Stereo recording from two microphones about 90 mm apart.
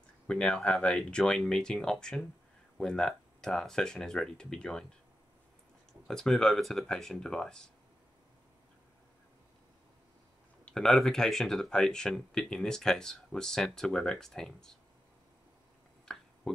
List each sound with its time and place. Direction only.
0.3 s speech: 10° left (ahead or behind)
6.0 s speech: 5° left (ahead or behind)
10.6 s speech: 5° left (ahead or behind)
16.1 s finger snapping: 10° left (ahead or behind)
16.5 s speech: 10° left (ahead or behind)